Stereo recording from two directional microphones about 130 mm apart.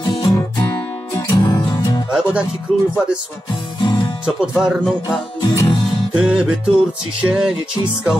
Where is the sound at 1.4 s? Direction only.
30° left (ahead or behind).